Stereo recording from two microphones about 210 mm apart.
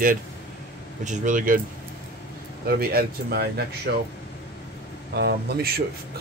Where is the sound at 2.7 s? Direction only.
45° right (ahead or behind).